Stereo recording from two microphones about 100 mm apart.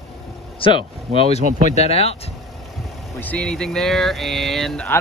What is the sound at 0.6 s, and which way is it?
Speech, 60° left (ahead or behind).